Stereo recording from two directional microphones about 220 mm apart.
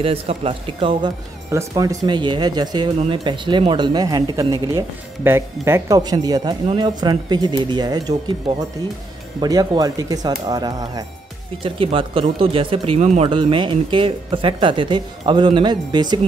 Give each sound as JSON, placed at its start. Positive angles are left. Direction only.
{"t": 0.0, "sound": "speech", "side_deg": -25}